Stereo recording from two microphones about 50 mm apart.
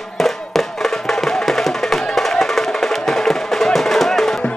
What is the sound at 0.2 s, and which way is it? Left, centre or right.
Music, centre.